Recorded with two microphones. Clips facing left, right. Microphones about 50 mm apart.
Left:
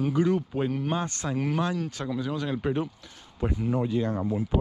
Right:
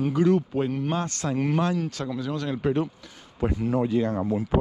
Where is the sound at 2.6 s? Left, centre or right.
Right.